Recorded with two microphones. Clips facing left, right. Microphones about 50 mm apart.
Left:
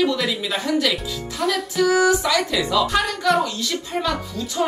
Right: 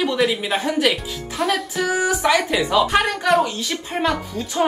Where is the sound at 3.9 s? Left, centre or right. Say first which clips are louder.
Right 4 dB; right.